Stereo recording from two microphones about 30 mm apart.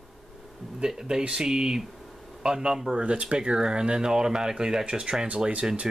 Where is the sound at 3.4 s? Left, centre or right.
Right.